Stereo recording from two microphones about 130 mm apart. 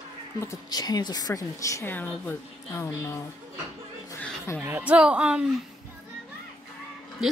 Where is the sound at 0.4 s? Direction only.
25° left (ahead or behind).